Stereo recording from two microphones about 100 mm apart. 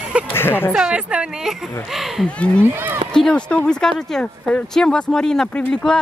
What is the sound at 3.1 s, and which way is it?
Speech, 10° left (ahead or behind).